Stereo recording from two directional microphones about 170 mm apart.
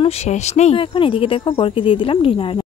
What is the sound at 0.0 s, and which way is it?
Speech, 40° left (ahead or behind).